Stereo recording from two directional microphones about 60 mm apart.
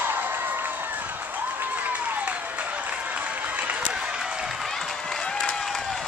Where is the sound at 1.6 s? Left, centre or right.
Right; by 4.7 s centre.